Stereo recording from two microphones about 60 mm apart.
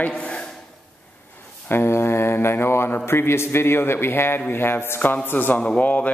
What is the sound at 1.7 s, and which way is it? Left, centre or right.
Mantra, left.